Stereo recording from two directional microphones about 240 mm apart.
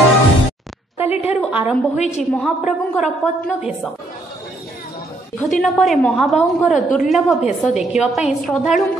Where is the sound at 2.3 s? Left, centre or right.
Centre.